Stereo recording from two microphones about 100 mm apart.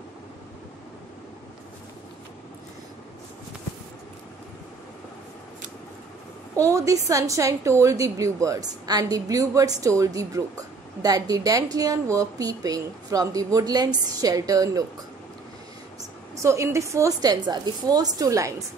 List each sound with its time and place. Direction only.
6.6 s a woman's voice: 35° right (ahead or behind)
16.3 s a woman's voice: 30° right (ahead or behind)